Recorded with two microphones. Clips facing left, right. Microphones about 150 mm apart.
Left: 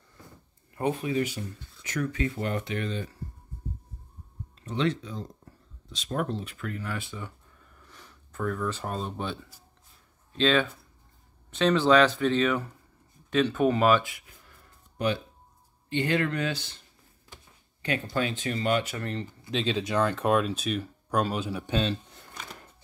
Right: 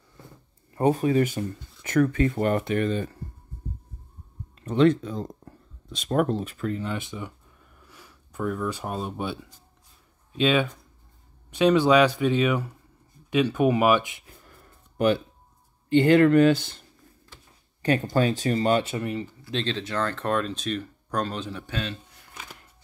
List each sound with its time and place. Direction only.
0.7 s speech: 40° right (ahead or behind)
4.6 s speech: 50° right (ahead or behind)
5.4 s a sound: 50° right (ahead or behind)
6.6 s speech: 25° right (ahead or behind)
15.9 s speech: 50° right (ahead or behind)
17.8 s speech: 40° right (ahead or behind)
18.9 s speech: 10° right (ahead or behind)
19.5 s speech: 10° left (ahead or behind)